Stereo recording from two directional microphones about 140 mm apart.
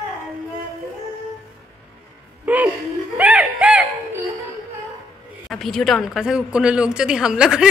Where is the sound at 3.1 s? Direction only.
10° right (ahead or behind).